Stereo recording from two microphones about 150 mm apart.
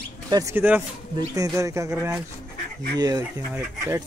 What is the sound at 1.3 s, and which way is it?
Speech, 20° right (ahead or behind).